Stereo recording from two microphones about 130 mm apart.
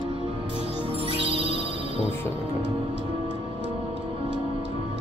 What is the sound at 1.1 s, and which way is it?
Music, 45° right (ahead or behind).